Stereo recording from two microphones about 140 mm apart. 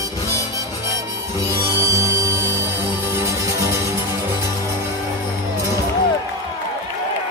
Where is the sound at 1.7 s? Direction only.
20° right (ahead or behind).